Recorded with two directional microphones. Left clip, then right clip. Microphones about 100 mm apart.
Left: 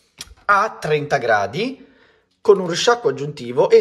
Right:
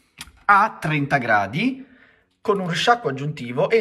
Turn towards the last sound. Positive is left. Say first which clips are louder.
# left 5 dB
turn(degrees=35)  # may be behind; listen again after turning